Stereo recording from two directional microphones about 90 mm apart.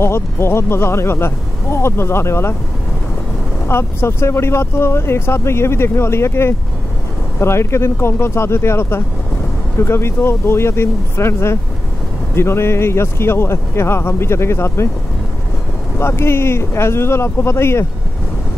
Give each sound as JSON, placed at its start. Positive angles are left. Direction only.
{"t": 0.0, "sound": "speech", "side_deg": 30}
{"t": 3.6, "sound": "speech", "side_deg": 30}
{"t": 16.0, "sound": "speech", "side_deg": 30}